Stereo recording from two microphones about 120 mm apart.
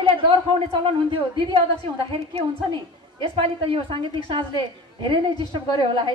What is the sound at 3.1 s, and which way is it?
A woman's voice, 45° right (ahead or behind).